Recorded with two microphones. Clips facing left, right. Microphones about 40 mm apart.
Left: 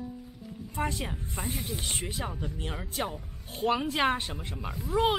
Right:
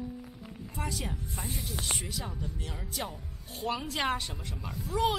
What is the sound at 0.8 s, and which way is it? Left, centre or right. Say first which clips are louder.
Speech: left 4 dB; left.